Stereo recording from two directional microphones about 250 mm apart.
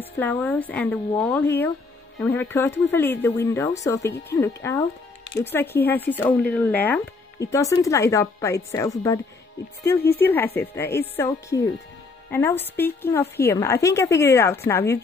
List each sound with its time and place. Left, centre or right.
0.0 s speech: centre
9.8 s speech: left
10.2 s speech: centre
12.3 s speech: centre